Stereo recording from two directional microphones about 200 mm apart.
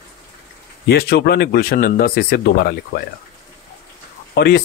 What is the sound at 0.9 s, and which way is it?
Speech, 55° left (ahead or behind).